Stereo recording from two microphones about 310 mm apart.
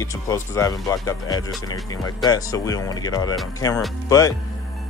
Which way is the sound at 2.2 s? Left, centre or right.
Centre.